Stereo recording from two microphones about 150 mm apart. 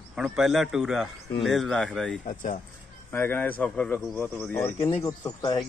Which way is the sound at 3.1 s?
10° left (ahead or behind).